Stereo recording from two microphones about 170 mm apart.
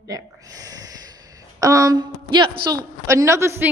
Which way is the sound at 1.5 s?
20° right (ahead or behind).